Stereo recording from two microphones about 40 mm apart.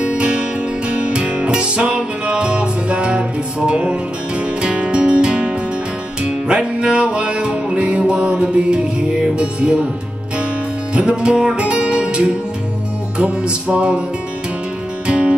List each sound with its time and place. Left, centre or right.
0.0 s music: right
10.9 s music: right
15.0 s music: right